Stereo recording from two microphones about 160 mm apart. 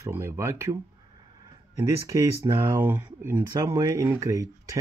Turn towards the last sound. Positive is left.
turn(degrees=-20)  # may be behind; listen again after turning